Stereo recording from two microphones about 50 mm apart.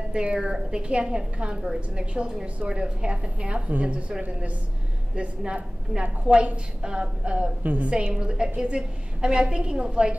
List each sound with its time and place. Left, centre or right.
0.2 s a woman's voice: right
5.1 s a woman's voice: right
7.6 s a woman's voice: right
7.9 s a woman's voice: right